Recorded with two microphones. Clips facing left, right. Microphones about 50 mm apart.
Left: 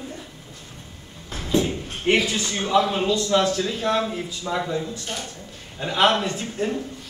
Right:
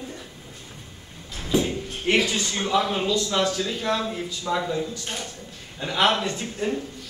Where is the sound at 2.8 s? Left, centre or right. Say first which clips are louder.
Left 2 dB; centre.